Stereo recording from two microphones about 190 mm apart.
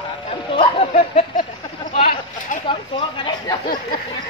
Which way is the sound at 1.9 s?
30° left (ahead or behind).